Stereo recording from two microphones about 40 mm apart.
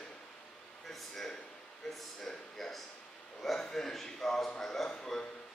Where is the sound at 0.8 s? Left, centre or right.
Centre.